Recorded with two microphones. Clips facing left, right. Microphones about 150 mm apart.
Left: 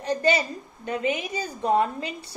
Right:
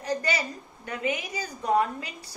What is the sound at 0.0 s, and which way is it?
A woman's voice, 25° left (ahead or behind).